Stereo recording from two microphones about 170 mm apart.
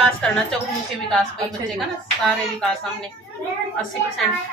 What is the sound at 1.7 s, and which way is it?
Speech, centre (ahead or behind).